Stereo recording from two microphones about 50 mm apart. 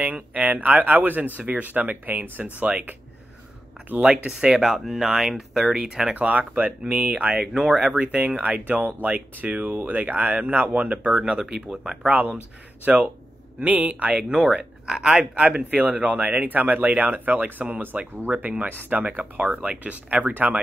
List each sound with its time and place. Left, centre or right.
0.0 s speech: right
5.2 s speech: centre
6.1 s speech: right
11.1 s speech: right
12.1 s speech: right
14.3 s speech: centre; by 20.6 s right